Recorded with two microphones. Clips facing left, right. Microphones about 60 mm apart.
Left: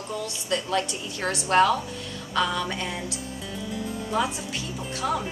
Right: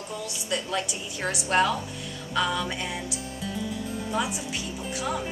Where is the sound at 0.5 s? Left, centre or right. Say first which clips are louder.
Left 3 dB; centre.